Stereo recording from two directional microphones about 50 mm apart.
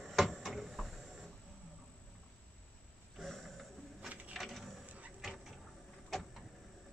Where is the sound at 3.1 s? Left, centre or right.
Centre.